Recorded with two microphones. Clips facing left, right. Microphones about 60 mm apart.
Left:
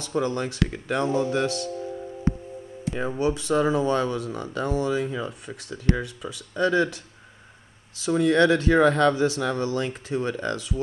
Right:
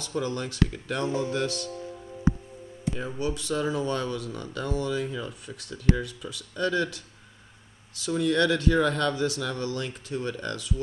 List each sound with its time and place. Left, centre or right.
0.0 s speech: left
3.1 s speech: left
8.0 s speech: left